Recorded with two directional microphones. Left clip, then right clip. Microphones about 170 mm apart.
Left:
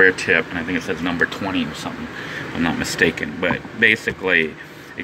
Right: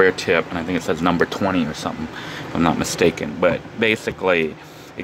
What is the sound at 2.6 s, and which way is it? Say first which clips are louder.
Speech: right 3 dB; 25° right (ahead or behind).